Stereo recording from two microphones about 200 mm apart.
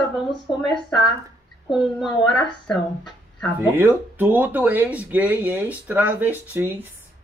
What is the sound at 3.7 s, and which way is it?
A man's voice, 10° right (ahead or behind).